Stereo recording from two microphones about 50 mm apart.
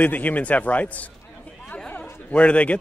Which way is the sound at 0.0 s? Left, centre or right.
Left.